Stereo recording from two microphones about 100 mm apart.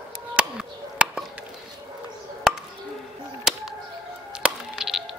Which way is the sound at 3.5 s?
5° right (ahead or behind).